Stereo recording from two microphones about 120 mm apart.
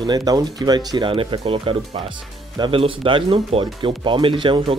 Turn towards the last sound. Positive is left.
turn(degrees=-45)  # may be behind; listen again after turning